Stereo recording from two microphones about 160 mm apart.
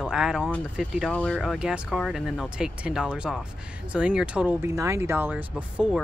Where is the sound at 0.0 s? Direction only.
5° right (ahead or behind).